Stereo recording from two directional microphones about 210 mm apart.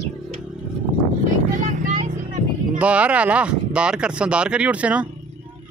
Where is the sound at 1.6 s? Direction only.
40° right (ahead or behind).